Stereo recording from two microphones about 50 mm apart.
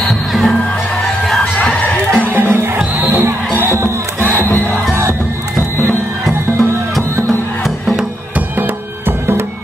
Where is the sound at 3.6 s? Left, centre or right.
Right.